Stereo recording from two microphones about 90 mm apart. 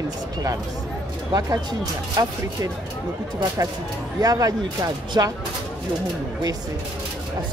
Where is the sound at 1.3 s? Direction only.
50° right (ahead or behind).